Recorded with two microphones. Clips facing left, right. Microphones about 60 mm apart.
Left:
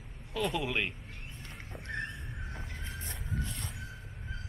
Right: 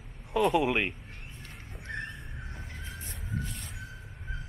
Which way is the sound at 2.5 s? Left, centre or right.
Centre.